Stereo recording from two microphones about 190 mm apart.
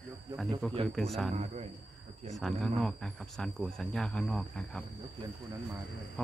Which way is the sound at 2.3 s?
Centre (ahead or behind).